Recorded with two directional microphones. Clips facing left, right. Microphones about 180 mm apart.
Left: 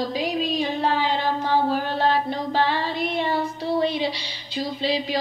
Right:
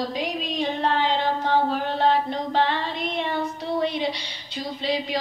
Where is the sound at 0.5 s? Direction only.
5° left (ahead or behind).